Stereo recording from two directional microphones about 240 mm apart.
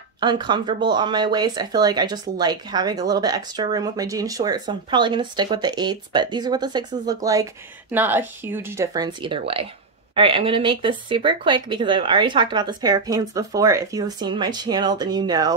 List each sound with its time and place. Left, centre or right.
0.2 s speech: centre